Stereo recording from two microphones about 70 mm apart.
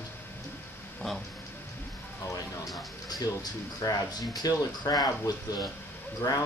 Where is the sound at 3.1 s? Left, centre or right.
Left.